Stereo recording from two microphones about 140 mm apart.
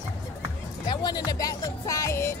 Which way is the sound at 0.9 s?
30° left (ahead or behind).